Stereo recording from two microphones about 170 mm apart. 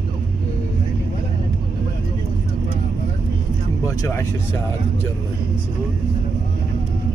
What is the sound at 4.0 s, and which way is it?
Speech, 15° left (ahead or behind).